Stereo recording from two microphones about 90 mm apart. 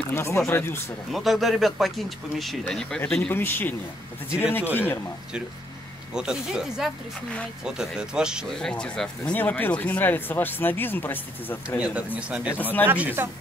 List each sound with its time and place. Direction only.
0.1 s speech: 30° left (ahead or behind)
1.1 s speech: centre (ahead or behind)
3.3 s speech: 25° left (ahead or behind)
6.1 s speech: 10° right (ahead or behind)
8.5 s speech: 5° left (ahead or behind); by 11.6 s 20° left (ahead or behind)
11.8 s speech: 15° right (ahead or behind)